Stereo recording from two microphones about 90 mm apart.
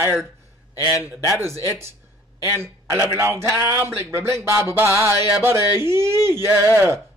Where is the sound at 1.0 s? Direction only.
30° right (ahead or behind).